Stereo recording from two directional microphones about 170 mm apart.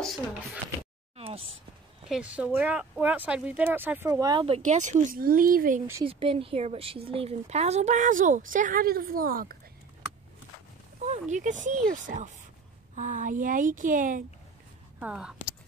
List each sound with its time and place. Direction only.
1.1 s a sound: 35° right (ahead or behind)
2.0 s speech: 5° right (ahead or behind)
4.1 s speech: 25° right (ahead or behind)
4.6 s speech: 45° right (ahead or behind)
6.0 s speech: 35° right (ahead or behind); by 9.6 s 55° right (ahead or behind)
11.0 s speech: 45° right (ahead or behind)
15.0 s speech: 5° right (ahead or behind)